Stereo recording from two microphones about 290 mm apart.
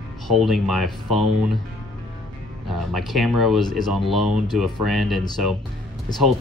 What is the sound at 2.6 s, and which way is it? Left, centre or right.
Speech, centre.